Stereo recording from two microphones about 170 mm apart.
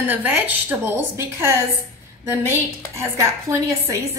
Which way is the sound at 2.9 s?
15° right (ahead or behind).